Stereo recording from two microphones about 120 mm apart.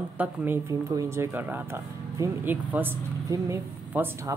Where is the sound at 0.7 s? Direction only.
25° right (ahead or behind).